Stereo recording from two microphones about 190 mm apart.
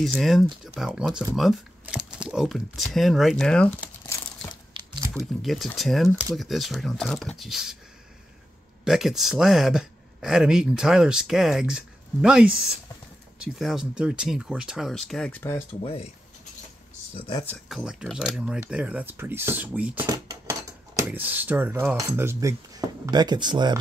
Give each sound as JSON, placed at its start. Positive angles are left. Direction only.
{"t": 0.0, "sound": "speech", "side_deg": 0}
{"t": 4.7, "sound": "typing", "side_deg": -25}
{"t": 5.1, "sound": "speech", "side_deg": 0}
{"t": 8.8, "sound": "speech", "side_deg": 0}
{"t": 17.1, "sound": "speech", "side_deg": 30}
{"t": 17.6, "sound": "speech", "side_deg": -5}